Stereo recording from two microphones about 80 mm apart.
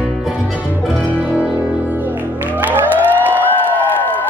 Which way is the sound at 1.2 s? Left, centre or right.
Centre.